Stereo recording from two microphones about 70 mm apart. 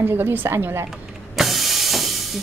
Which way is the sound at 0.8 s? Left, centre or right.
Centre.